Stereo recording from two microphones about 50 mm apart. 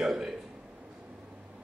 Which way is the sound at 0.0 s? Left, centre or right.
Centre.